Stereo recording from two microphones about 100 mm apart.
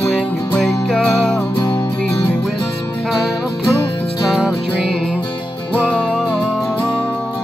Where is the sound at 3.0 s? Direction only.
Centre (ahead or behind).